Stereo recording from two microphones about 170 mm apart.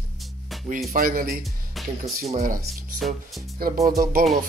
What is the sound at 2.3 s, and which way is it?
Speech, 50° right (ahead or behind).